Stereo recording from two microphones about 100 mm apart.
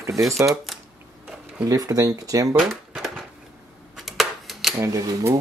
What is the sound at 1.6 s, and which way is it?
Speech, 35° right (ahead or behind).